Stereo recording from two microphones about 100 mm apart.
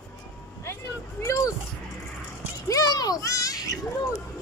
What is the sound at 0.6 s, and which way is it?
Vehicle, 30° left (ahead or behind).